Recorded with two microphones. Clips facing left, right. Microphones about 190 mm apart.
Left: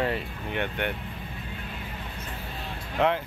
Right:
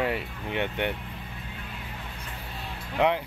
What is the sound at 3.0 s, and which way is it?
Music, 15° right (ahead or behind).